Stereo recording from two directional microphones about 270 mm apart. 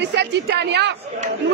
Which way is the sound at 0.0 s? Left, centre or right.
Right.